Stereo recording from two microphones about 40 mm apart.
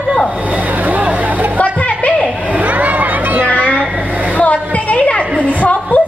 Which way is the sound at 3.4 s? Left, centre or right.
Left.